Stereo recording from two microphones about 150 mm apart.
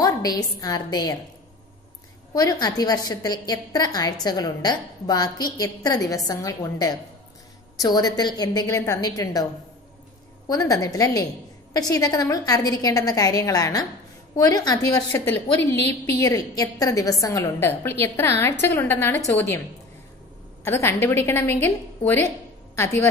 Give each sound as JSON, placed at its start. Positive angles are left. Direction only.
{"t": 0.0, "sound": "a woman's voice", "side_deg": 25}
{"t": 2.3, "sound": "a woman's voice", "side_deg": 25}
{"t": 10.5, "sound": "a woman's voice", "side_deg": 25}
{"t": 20.6, "sound": "a woman's voice", "side_deg": 15}